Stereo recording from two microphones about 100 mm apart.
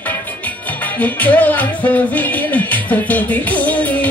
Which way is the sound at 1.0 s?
15° left (ahead or behind).